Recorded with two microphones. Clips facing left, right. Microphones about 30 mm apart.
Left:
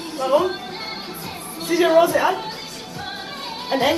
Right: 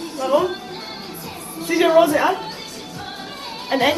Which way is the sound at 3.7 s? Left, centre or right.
Centre.